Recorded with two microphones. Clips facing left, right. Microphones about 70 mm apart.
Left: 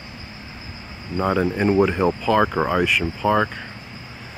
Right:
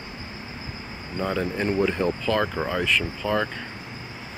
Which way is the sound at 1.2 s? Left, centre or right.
Left.